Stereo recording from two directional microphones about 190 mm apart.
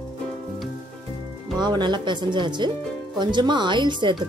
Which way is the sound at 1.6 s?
25° right (ahead or behind).